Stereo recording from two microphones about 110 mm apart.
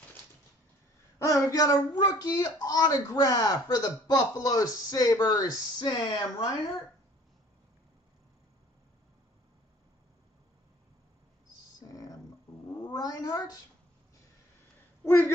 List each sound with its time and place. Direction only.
1.2 s speech: 30° left (ahead or behind); by 6.7 s 45° left (ahead or behind)
11.9 s music: 35° left (ahead or behind)
12.9 s speech: 35° left (ahead or behind)
15.0 s speech: 25° left (ahead or behind)